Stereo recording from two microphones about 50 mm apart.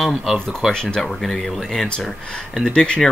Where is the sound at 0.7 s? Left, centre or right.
Centre.